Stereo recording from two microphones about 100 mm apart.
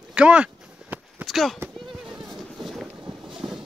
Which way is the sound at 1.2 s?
Centre (ahead or behind).